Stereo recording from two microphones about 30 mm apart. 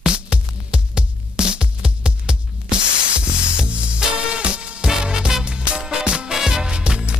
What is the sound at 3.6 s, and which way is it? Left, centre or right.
Music, right.